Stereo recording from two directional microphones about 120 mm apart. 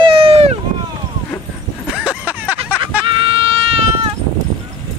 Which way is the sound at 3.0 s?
45° right (ahead or behind).